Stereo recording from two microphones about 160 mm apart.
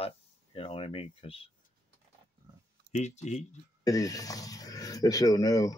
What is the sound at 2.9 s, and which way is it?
Speech, 45° left (ahead or behind).